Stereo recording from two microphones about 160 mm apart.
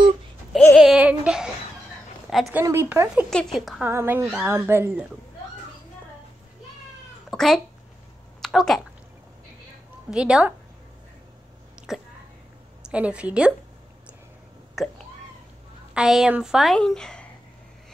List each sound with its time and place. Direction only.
0.7 s a sound: 5° right (ahead or behind)
2.5 s speech: 15° right (ahead or behind)
3.3 s a woman's voice: centre (ahead or behind)
3.8 s speech: 15° right (ahead or behind)
7.2 s speech: centre (ahead or behind)
8.4 s a sound: centre (ahead or behind)
10.1 s a woman's voice: 5° right (ahead or behind)
12.8 s speech: 5° right (ahead or behind)
14.8 s a woman's voice: centre (ahead or behind)